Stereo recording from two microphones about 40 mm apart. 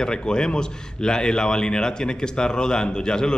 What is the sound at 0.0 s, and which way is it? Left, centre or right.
Speech, left.